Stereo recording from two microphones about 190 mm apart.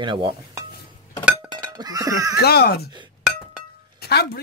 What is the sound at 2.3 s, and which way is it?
Speech, 55° left (ahead or behind).